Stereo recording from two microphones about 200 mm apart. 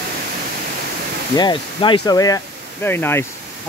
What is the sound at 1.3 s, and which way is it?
Speech, 20° left (ahead or behind).